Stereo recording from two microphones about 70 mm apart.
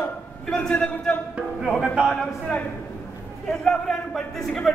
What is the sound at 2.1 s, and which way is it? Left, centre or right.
Speech, centre.